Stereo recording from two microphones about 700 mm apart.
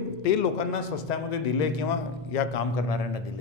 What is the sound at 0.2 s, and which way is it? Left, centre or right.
Speech, left.